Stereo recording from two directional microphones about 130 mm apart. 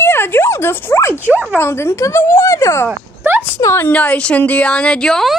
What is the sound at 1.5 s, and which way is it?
Speech, 20° left (ahead or behind).